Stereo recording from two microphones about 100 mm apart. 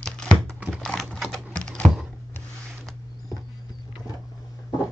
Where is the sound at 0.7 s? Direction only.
5° left (ahead or behind).